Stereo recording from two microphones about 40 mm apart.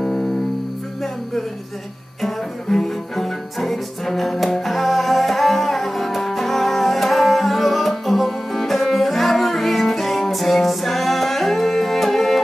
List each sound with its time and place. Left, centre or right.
0.0 s music: centre
2.2 s music: centre